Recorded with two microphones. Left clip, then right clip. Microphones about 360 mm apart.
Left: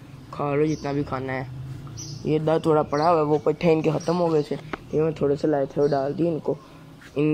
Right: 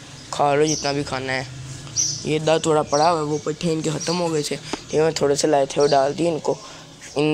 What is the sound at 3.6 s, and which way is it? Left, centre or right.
Speech, centre.